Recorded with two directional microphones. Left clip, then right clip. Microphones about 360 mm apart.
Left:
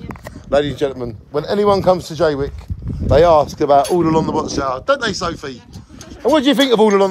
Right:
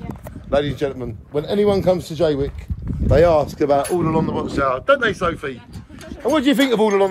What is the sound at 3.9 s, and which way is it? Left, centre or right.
A man's voice, left.